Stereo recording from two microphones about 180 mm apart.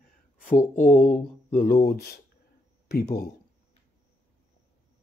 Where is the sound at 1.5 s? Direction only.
60° left (ahead or behind).